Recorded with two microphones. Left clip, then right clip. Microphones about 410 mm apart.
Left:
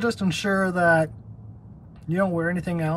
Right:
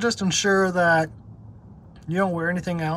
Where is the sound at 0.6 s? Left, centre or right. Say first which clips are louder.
Left 3 dB; centre.